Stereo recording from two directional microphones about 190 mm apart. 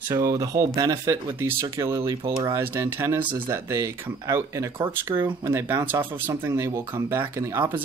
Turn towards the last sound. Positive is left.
turn(degrees=-10)  # may be behind; listen again after turning